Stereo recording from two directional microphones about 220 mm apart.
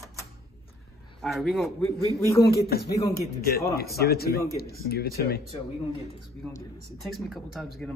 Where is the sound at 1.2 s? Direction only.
Centre (ahead or behind).